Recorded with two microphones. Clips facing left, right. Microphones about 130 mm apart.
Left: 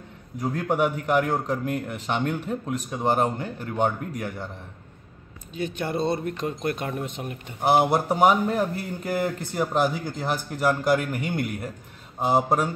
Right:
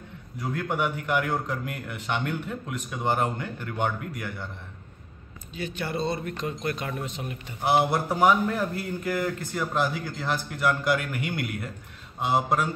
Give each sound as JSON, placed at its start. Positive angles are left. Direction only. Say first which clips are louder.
{"t": 0.4, "sound": "a man's voice", "louder": "left 4 dB", "side_deg": 40}
{"t": 5.9, "sound": "a man's voice", "louder": "left 4 dB", "side_deg": 50}